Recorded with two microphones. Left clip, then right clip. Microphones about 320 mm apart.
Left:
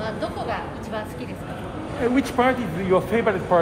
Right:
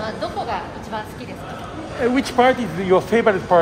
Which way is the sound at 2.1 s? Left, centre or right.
Right.